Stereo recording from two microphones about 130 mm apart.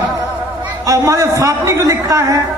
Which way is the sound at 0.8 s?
25° right (ahead or behind).